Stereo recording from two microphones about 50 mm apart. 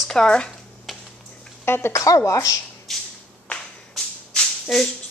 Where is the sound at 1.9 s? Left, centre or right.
Left.